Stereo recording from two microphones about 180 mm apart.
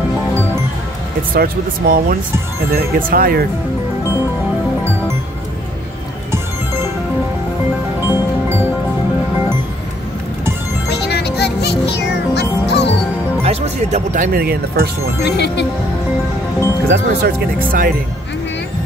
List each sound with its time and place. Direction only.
1.3 s speech: 55° right (ahead or behind)
10.9 s music: 65° left (ahead or behind)
13.4 s speech: 40° right (ahead or behind); by 14.9 s 55° right (ahead or behind)
15.2 s speech: 70° left (ahead or behind)
16.9 s speech: 55° right (ahead or behind)